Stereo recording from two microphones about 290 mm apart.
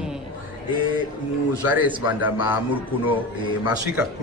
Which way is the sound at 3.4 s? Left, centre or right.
Centre.